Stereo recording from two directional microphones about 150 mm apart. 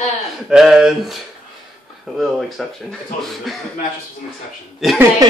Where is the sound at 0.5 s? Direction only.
5° right (ahead or behind).